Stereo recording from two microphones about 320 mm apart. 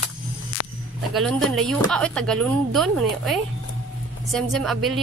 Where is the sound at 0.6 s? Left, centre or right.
Left.